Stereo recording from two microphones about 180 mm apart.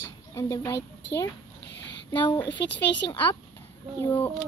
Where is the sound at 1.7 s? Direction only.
75° left (ahead or behind).